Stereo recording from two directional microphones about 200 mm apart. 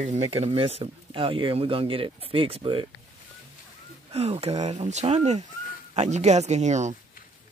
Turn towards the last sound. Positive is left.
turn(degrees=-35)  # may be behind; listen again after turning